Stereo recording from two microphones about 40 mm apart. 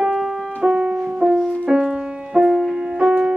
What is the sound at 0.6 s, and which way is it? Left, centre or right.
Music, right.